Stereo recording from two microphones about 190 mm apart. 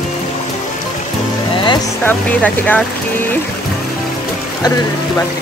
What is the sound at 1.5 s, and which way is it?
Music, 25° left (ahead or behind).